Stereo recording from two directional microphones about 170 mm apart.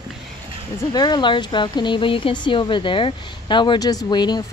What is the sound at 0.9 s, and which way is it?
Speech, 25° left (ahead or behind).